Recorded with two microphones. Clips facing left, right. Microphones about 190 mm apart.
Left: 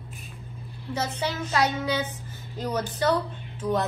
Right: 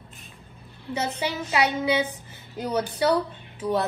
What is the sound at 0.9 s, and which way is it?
A woman's voice, 10° right (ahead or behind).